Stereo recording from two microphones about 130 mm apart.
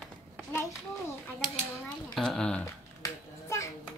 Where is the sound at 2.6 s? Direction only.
20° left (ahead or behind).